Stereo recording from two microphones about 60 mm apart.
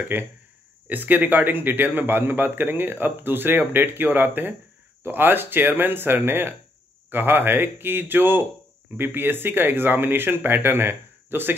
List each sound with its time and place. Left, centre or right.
0.1 s a man's voice: right